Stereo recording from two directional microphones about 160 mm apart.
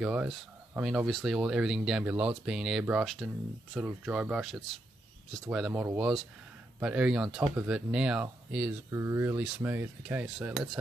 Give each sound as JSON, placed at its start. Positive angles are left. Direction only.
{"t": 0.0, "sound": "speech", "side_deg": -5}
{"t": 8.9, "sound": "cutlery", "side_deg": -20}